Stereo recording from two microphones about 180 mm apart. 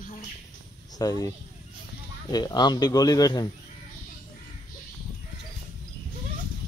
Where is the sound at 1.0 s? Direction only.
20° left (ahead or behind).